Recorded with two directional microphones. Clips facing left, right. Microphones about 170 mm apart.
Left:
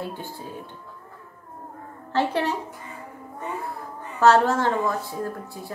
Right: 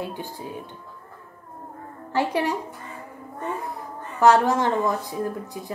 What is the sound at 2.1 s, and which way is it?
Speech, 10° right (ahead or behind).